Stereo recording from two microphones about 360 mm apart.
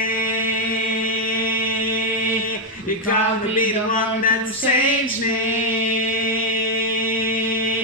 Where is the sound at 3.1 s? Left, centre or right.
Left.